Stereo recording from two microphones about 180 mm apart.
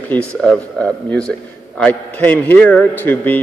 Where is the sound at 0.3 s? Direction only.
5° left (ahead or behind).